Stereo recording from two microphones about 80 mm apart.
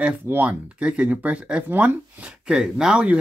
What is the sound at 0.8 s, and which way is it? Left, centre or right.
Speech, centre.